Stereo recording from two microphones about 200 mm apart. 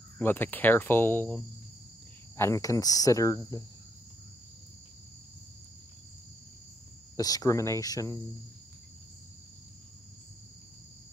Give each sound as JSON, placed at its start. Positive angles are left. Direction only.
{"t": 0.2, "sound": "speech", "side_deg": 10}
{"t": 7.2, "sound": "speech", "side_deg": 20}